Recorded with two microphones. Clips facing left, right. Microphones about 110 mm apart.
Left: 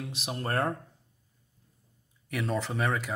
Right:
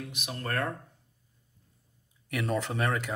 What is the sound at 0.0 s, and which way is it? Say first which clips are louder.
Speech: left 3 dB; 30° left (ahead or behind).